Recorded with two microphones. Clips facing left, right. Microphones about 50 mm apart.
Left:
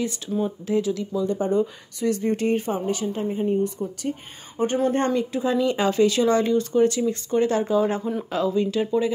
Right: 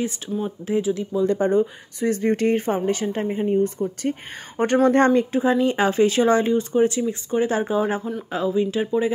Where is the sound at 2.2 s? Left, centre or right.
Right.